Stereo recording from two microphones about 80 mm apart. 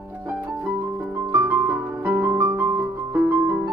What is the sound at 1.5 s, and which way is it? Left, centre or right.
Music, right.